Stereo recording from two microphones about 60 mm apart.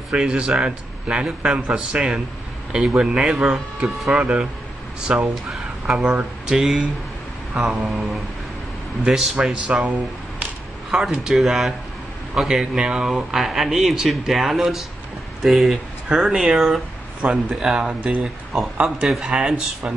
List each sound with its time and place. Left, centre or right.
0.1 s a man's voice: centre
4.1 s a man's voice: centre
7.8 s speech: centre
9.5 s a man's voice: centre